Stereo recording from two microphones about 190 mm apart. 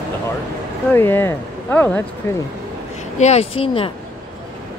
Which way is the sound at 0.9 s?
10° left (ahead or behind).